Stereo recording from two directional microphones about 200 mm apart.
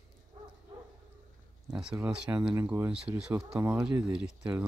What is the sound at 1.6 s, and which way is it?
Speech, 5° right (ahead or behind).